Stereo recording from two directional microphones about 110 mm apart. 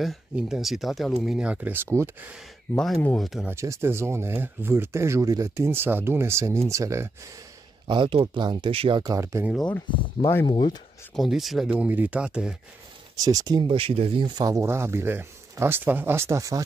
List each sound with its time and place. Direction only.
0.0 s speech: centre (ahead or behind); by 2.0 s 25° right (ahead or behind)
3.2 s speech: centre (ahead or behind)
3.4 s speech: 25° right (ahead or behind)
7.8 s speech: 45° right (ahead or behind)
9.0 s speech: 30° right (ahead or behind)
9.8 s speech: 20° left (ahead or behind)
10.4 s speech: 40° left (ahead or behind)
11.1 s speech: centre (ahead or behind)
13.2 s speech: 35° right (ahead or behind)
13.7 s speech: 55° right (ahead or behind)
14.4 s speech: 30° right (ahead or behind)